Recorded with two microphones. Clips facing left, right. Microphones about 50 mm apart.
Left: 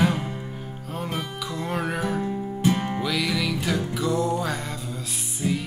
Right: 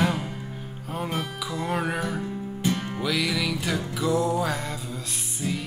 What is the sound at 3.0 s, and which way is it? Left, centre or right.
Music, centre.